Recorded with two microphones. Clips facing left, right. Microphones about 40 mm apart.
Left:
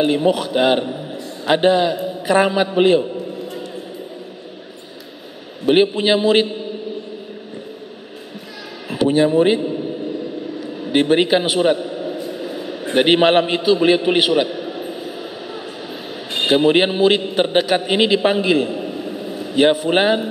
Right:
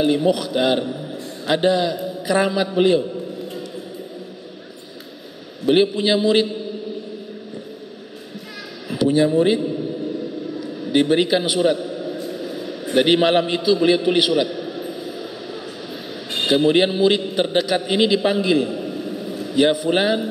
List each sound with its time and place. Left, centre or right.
0.0 s a man's voice: left
5.7 s a man's voice: left
8.9 s speech: left
10.6 s a sound: left
12.8 s a man's voice: left
16.4 s a man's voice: left